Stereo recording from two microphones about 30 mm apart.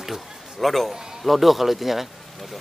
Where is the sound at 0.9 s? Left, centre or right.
Centre.